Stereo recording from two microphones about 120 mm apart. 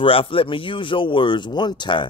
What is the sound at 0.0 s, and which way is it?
Speech, 50° left (ahead or behind).